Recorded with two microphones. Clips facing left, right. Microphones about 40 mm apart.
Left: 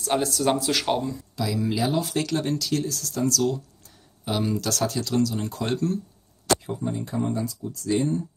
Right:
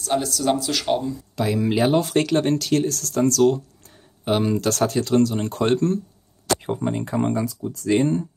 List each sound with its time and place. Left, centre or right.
0.0 s speech: centre
1.3 s speech: right
6.6 s speech: right
7.4 s speech: right